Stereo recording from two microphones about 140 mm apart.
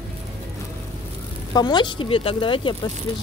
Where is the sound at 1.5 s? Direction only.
30° left (ahead or behind).